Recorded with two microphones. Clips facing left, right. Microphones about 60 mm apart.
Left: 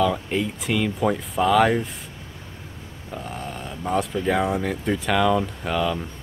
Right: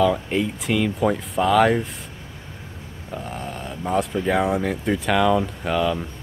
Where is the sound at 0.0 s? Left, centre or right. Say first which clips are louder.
Right 2 dB; centre.